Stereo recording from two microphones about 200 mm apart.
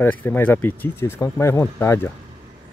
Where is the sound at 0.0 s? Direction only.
10° left (ahead or behind).